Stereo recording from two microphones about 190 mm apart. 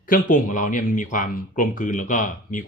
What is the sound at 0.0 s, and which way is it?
Speech, 45° left (ahead or behind).